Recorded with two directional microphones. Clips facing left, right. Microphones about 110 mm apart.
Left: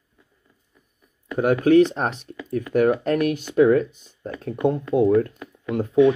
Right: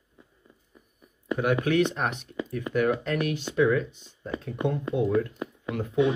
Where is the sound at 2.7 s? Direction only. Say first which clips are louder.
Left 6 dB; 45° left (ahead or behind).